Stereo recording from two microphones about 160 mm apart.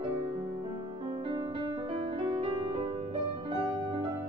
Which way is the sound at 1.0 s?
30° right (ahead or behind).